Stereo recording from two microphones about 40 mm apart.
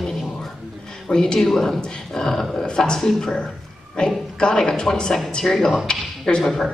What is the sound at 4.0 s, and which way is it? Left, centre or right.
A man's voice, centre.